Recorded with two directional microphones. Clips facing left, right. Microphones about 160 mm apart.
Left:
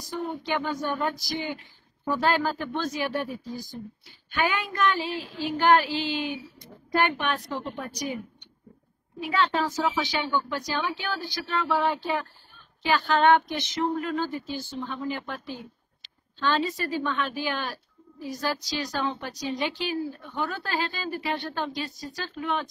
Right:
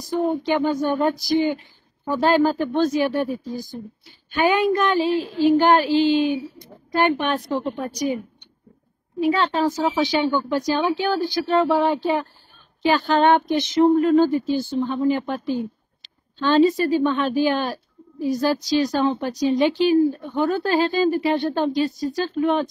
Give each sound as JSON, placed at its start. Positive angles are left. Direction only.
{"t": 0.5, "sound": "a woman's voice", "side_deg": -25}
{"t": 4.3, "sound": "a woman's voice", "side_deg": -25}
{"t": 9.2, "sound": "a woman's voice", "side_deg": -30}